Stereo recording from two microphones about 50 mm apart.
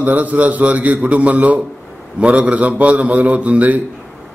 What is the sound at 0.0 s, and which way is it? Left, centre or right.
A man's voice, right.